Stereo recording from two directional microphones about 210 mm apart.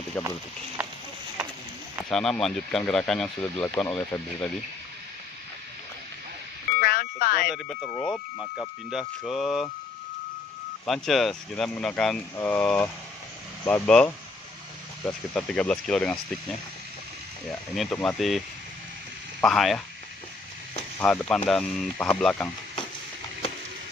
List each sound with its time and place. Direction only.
2.0 s speech: centre (ahead or behind)
6.8 s a sound: 45° left (ahead or behind)
7.4 s speech: centre (ahead or behind)
10.9 s speech: centre (ahead or behind)
17.5 s speech: 5° left (ahead or behind)
19.4 s speech: centre (ahead or behind)
21.0 s speech: 5° left (ahead or behind)